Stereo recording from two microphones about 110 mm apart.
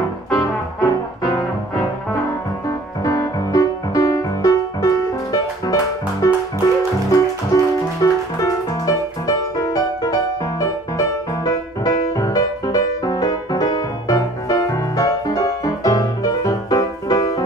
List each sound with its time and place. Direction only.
0.3 s music: 35° left (ahead or behind)
3.0 s music: 30° left (ahead or behind)